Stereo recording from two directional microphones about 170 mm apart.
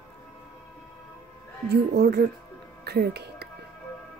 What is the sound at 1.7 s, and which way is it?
Speech, 75° right (ahead or behind).